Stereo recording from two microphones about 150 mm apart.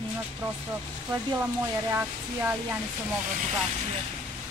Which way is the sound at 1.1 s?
15° right (ahead or behind).